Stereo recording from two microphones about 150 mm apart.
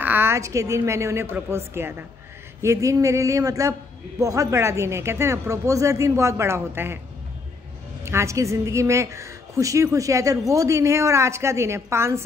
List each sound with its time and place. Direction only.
0.0 s a woman's voice: 15° right (ahead or behind)
8.0 s a woman's voice: 20° right (ahead or behind)